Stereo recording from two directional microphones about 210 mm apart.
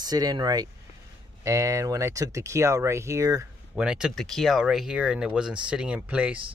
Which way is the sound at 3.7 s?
5° right (ahead or behind).